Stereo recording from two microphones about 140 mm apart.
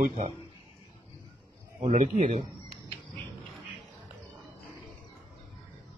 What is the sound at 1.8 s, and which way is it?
Speech, 45° right (ahead or behind).